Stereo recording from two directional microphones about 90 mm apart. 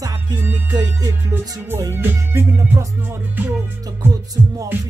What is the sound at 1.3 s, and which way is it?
Speech, 25° right (ahead or behind).